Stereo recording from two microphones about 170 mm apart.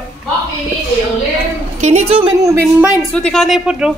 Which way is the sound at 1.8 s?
45° right (ahead or behind).